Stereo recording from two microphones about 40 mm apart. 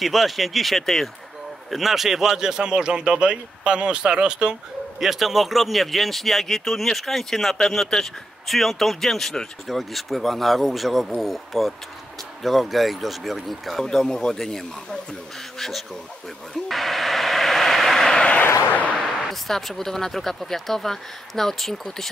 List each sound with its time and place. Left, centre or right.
0.0 s a man's voice: centre; by 4.6 s right
5.0 s speech: centre
16.6 s radio: centre
18.0 s a sound: left
18.4 s vehicle: left
18.9 s speech: centre